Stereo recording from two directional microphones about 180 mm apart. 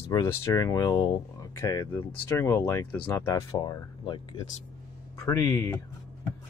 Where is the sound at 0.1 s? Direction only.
20° left (ahead or behind).